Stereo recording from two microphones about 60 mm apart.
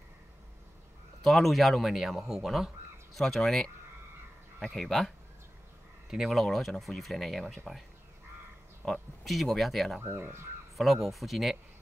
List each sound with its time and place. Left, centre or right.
1.2 s speech: centre
6.0 s speech: centre
6.4 s speech: centre
8.8 s speech: centre
10.0 s speech: right
10.8 s speech: centre